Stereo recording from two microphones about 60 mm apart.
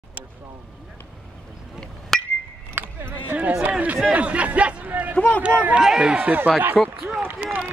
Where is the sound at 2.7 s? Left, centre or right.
Right.